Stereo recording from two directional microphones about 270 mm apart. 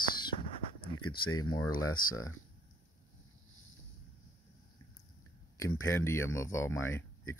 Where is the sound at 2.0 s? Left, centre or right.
Left.